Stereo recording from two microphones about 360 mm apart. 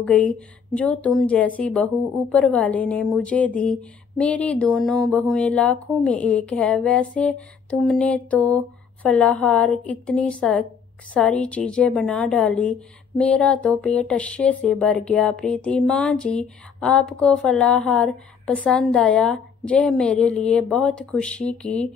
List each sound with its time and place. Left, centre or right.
0.0 s speech: centre